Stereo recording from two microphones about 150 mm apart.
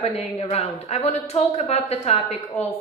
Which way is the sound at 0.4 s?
45° left (ahead or behind).